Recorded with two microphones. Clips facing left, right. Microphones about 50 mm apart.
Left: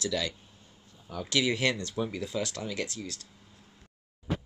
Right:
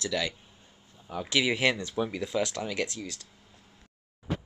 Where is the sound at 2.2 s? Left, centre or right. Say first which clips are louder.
Right 3 dB; right.